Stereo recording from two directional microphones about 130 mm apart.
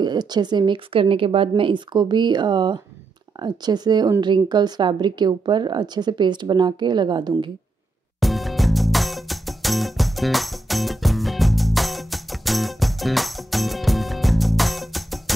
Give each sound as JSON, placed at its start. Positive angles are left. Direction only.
{"t": 0.0, "sound": "speech", "side_deg": -35}
{"t": 8.2, "sound": "music", "side_deg": 0}